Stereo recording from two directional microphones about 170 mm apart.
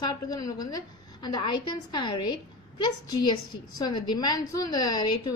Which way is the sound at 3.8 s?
25° left (ahead or behind).